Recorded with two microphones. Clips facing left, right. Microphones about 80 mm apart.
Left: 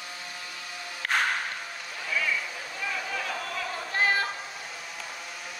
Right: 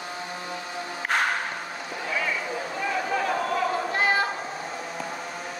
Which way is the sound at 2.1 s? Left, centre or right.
Right.